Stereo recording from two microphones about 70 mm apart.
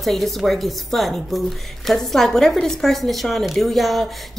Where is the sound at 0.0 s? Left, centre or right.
Centre.